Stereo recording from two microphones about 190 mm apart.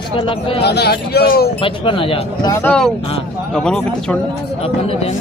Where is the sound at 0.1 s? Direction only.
30° left (ahead or behind).